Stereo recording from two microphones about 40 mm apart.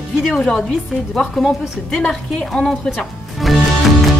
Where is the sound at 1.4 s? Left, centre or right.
Centre.